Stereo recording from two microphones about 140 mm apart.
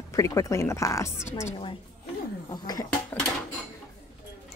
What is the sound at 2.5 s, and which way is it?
Speech, 30° left (ahead or behind).